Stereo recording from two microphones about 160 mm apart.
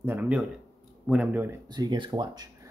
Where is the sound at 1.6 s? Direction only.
25° right (ahead or behind).